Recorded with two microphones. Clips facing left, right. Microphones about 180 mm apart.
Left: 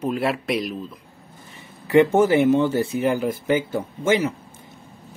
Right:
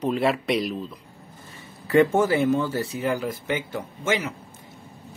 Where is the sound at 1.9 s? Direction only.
20° left (ahead or behind).